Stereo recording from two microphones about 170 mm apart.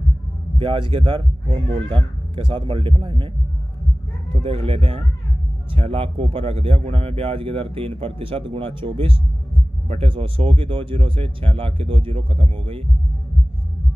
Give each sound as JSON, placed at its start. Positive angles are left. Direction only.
{"t": 0.6, "sound": "speech", "side_deg": -30}
{"t": 4.3, "sound": "a man's voice", "side_deg": -30}